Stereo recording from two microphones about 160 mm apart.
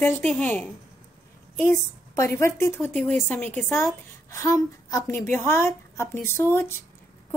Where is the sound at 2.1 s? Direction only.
20° left (ahead or behind).